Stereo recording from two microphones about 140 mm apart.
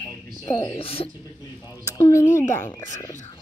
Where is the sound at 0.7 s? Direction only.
40° left (ahead or behind).